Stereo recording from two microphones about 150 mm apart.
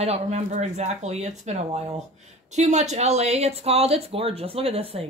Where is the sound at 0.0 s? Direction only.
45° right (ahead or behind).